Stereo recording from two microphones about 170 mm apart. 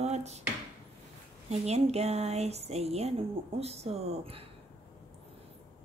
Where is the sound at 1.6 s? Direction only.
40° right (ahead or behind).